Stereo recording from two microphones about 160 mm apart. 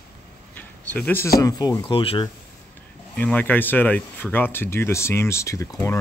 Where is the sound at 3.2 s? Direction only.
10° left (ahead or behind).